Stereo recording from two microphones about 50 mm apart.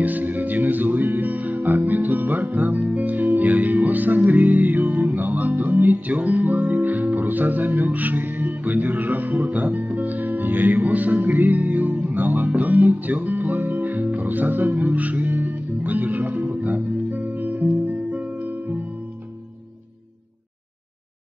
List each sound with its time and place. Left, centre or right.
0.0 s music: right